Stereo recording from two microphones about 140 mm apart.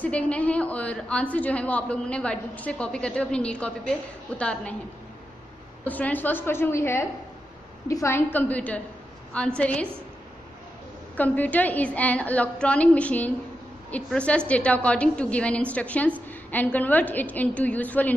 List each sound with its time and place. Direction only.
0.0 s a woman's voice: 10° left (ahead or behind)
5.9 s a woman's voice: 10° left (ahead or behind)
11.1 s a woman's voice: 10° left (ahead or behind)